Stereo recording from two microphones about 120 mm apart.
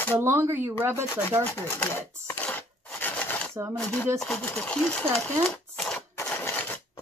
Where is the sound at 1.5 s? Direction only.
20° left (ahead or behind).